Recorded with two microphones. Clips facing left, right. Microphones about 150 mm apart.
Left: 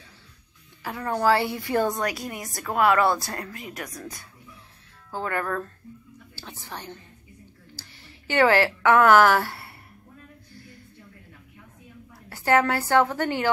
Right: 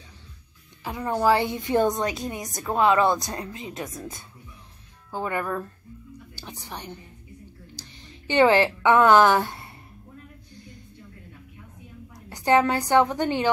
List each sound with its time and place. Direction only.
0.8 s a woman's voice: 15° right (ahead or behind)
10.5 s a sound: 20° right (ahead or behind)
12.3 s a woman's voice: 20° right (ahead or behind)